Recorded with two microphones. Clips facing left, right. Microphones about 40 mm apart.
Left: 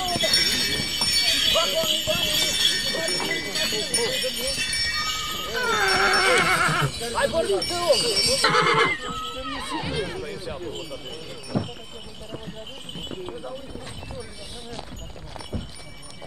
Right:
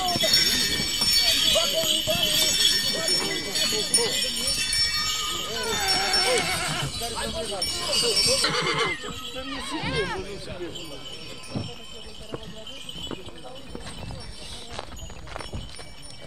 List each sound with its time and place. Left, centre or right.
0.0 s sheep: centre; by 7.5 s left
8.1 s speech: centre
8.4 s neigh: left
8.9 s neigh: centre
9.5 s speech: centre
9.9 s speech: right
11.5 s clip-clop: left